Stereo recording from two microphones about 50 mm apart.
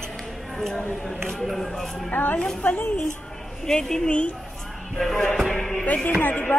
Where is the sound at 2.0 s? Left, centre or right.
Left.